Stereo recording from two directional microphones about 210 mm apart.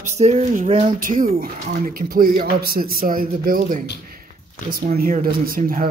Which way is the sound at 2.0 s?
45° right (ahead or behind).